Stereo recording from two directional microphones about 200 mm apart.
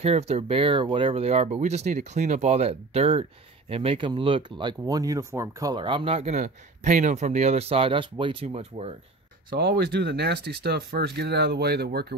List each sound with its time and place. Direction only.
0.0 s speech: 30° right (ahead or behind)
9.6 s speech: 50° right (ahead or behind)